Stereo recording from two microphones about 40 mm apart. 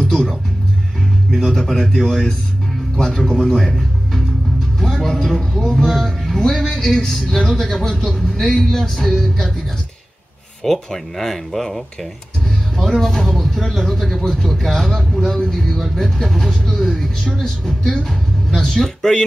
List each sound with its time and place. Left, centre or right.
0.0 s music: centre
1.3 s a man's voice: centre
7.9 s speech: centre
8.4 s speech: centre
10.9 s speech: centre